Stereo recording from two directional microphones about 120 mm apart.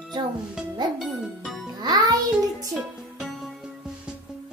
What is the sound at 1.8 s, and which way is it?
Music, 35° right (ahead or behind).